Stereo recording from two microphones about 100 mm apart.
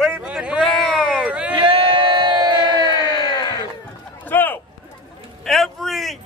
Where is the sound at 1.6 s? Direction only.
55° right (ahead or behind).